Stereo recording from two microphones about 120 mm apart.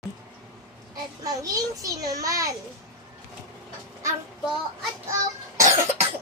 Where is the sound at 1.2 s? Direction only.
30° right (ahead or behind).